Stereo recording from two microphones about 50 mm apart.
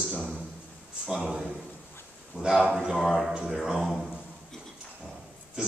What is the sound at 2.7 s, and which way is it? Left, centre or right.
A man's voice, centre.